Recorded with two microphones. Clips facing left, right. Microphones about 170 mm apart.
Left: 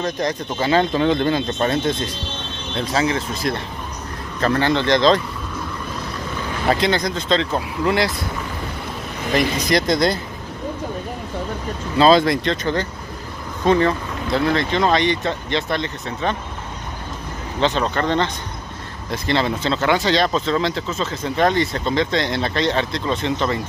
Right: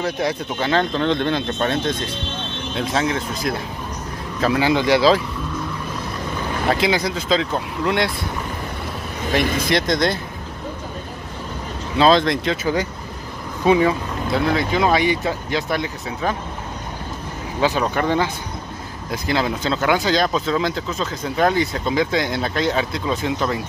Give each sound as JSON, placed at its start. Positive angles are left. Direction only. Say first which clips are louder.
{"t": 0.0, "sound": "speech", "louder": "even", "side_deg": -5}
{"t": 0.7, "sound": "speech", "louder": "left 2 dB", "side_deg": 5}
{"t": 6.7, "sound": "speech", "louder": "left 1 dB", "side_deg": -5}
{"t": 9.4, "sound": "speech", "louder": "even", "side_deg": -50}
{"t": 9.7, "sound": "speech", "louder": "left 3 dB", "side_deg": 0}
{"t": 12.0, "sound": "speech", "louder": "left 1 dB", "side_deg": 5}
{"t": 13.7, "sound": "speech", "louder": "right 1 dB", "side_deg": -10}
{"t": 17.6, "sound": "speech", "louder": "even", "side_deg": -10}